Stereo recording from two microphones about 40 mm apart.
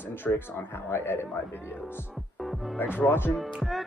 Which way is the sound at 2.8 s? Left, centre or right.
Left.